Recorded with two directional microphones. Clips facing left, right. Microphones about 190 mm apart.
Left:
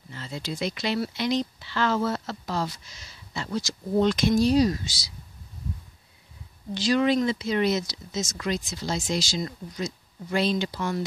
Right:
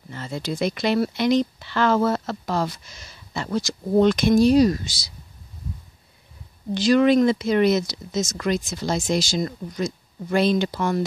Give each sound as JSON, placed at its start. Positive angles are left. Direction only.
{"t": 0.1, "sound": "speech", "side_deg": -50}
{"t": 6.7, "sound": "speech", "side_deg": -50}